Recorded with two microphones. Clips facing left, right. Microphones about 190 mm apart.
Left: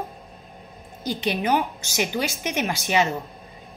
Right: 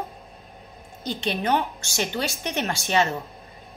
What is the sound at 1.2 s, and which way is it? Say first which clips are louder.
A woman's voice: left 1 dB; 10° left (ahead or behind).